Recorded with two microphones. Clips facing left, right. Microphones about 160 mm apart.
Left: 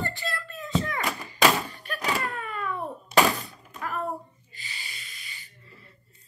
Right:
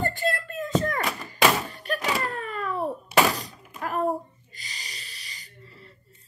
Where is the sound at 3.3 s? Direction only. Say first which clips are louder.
Right 2 dB; 40° right (ahead or behind).